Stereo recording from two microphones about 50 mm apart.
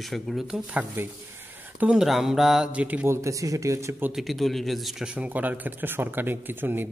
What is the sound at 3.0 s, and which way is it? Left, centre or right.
Speech, right.